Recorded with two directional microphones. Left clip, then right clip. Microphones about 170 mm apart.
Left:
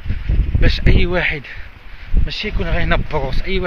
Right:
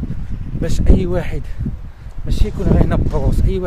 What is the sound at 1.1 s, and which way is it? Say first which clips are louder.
Speech: left 5 dB; 15° right (ahead or behind).